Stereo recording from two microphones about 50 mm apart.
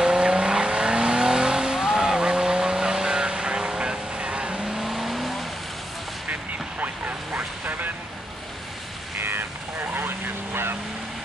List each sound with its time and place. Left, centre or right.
0.0 s vehicle: centre
4.7 s vehicle: centre
6.8 s vehicle: right
9.2 s vehicle: right